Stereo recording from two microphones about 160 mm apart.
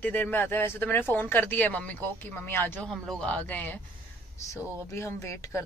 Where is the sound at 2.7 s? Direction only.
5° left (ahead or behind).